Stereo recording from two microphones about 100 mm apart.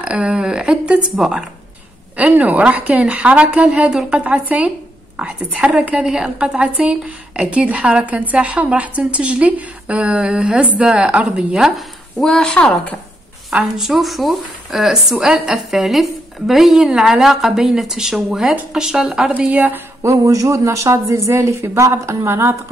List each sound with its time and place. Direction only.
0.0 s a woman's voice: 10° right (ahead or behind); by 12.7 s 10° left (ahead or behind)
13.5 s a woman's voice: 5° right (ahead or behind)
20.0 s speech: 35° right (ahead or behind)